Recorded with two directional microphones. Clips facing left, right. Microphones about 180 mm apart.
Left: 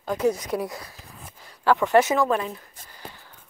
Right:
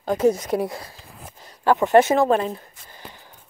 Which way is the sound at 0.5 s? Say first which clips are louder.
Right 4 dB; 30° right (ahead or behind).